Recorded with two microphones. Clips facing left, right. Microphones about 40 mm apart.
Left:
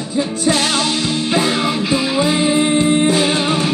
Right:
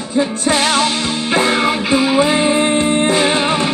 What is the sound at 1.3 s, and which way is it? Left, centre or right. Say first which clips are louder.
Music: right 4 dB; right.